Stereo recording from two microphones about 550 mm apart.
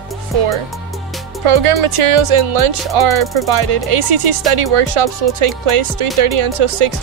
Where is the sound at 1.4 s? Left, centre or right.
Right.